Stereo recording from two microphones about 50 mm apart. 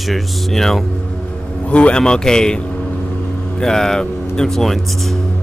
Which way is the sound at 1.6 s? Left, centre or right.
Left.